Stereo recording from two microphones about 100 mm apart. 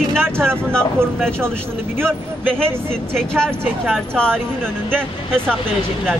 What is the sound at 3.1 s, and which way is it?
Speech, 5° left (ahead or behind).